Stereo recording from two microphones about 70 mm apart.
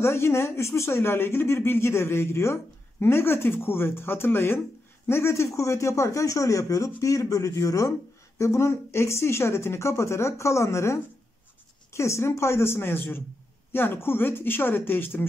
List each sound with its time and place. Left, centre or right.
0.0 s speech: left